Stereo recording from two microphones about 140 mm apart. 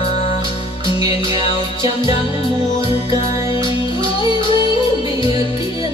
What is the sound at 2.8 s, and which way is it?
Music, 40° left (ahead or behind).